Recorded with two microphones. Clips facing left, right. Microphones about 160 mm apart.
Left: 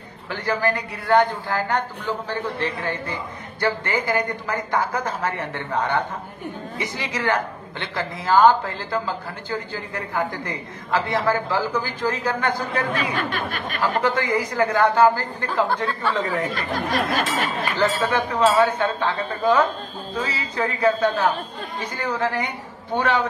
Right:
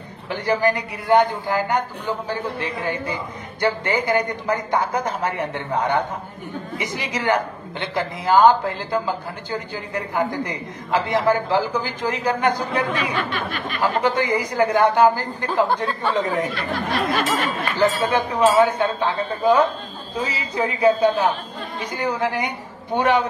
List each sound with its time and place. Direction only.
0.5 s speech: 15° right (ahead or behind)
12.9 s speech: 45° left (ahead or behind)
13.7 s speech: 15° right (ahead or behind)
16.5 s speech: 40° left (ahead or behind)
17.7 s speech: 15° right (ahead or behind)